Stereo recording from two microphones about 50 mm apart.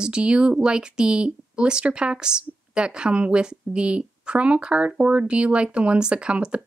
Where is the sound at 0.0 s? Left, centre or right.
Centre.